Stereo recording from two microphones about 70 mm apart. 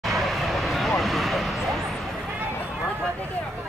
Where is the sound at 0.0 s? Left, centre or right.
Centre.